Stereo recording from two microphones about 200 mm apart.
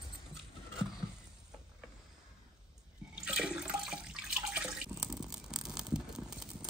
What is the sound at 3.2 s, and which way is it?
Water, 5° right (ahead or behind).